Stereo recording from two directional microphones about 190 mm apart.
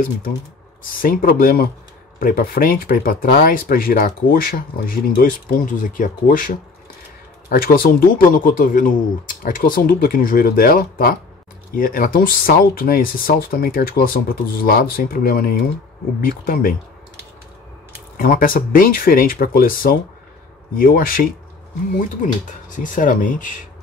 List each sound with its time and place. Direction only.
1.0 s speech: 50° left (ahead or behind)
18.1 s speech: 50° left (ahead or behind)